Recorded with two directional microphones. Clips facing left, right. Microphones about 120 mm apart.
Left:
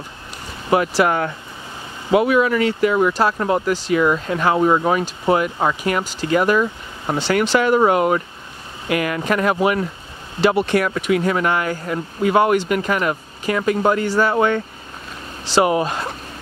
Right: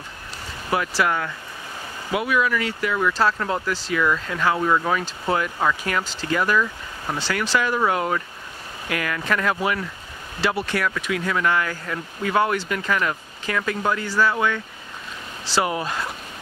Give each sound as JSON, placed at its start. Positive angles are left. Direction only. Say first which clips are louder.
{"t": 0.7, "sound": "speech", "louder": "left 6 dB", "side_deg": 25}
{"t": 3.1, "sound": "speech", "louder": "left 4 dB", "side_deg": 15}
{"t": 14.3, "sound": "speech", "louder": "left 6 dB", "side_deg": 35}
{"t": 15.4, "sound": "speech", "louder": "left 7 dB", "side_deg": 20}